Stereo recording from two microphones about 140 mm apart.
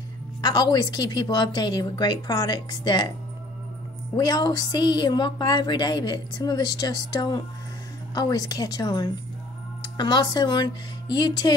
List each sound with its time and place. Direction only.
0.4 s a woman's voice: 30° left (ahead or behind)
4.2 s a woman's voice: 25° left (ahead or behind)